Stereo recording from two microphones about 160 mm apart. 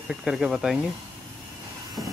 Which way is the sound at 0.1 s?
5° right (ahead or behind).